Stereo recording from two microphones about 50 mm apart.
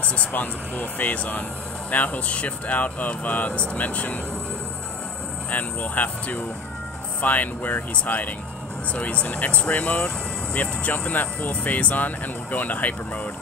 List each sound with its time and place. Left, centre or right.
0.0 s speech: left
5.5 s speech: left